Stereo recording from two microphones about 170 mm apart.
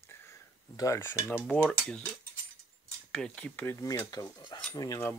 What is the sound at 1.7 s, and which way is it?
Speech, 5° left (ahead or behind).